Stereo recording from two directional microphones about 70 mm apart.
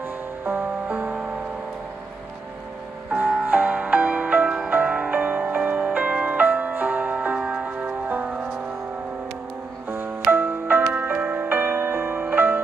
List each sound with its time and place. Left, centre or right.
0.8 s music: centre
3.1 s music: right
9.8 s music: right